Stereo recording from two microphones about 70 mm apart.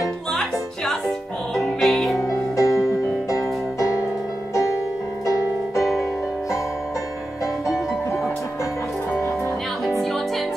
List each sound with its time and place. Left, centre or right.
0.0 s music: centre
2.5 s music: left
5.8 s music: centre